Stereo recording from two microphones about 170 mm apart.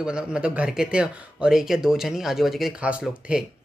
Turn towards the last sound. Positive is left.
turn(degrees=-5)  # may be behind; listen again after turning